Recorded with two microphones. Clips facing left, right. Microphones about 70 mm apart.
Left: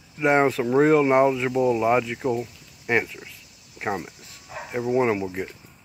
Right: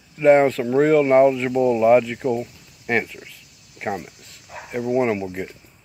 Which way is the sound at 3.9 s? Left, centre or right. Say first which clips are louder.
Right 1 dB; left.